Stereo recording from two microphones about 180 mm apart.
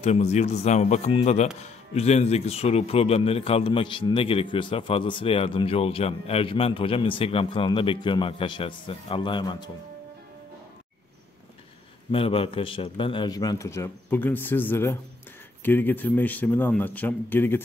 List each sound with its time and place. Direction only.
0.0 s speech: 35° left (ahead or behind)
12.1 s a man's voice: 30° left (ahead or behind); by 17.6 s 10° left (ahead or behind)